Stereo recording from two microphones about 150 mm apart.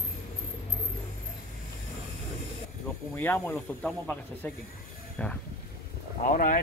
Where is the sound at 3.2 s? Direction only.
15° left (ahead or behind).